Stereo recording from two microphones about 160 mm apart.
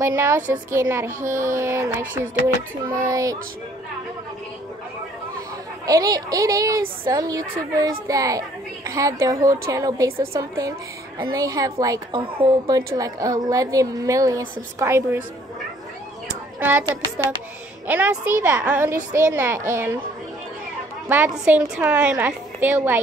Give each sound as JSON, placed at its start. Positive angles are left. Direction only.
{"t": 0.0, "sound": "a child's voice", "side_deg": -15}
{"t": 1.2, "sound": "a child's voice", "side_deg": -55}
{"t": 1.6, "sound": "a child's voice", "side_deg": -15}
{"t": 5.9, "sound": "a child's voice", "side_deg": -20}
{"t": 16.5, "sound": "a woman's voice", "side_deg": -10}
{"t": 17.8, "sound": "a child's voice", "side_deg": -10}
{"t": 21.1, "sound": "a child's voice", "side_deg": -10}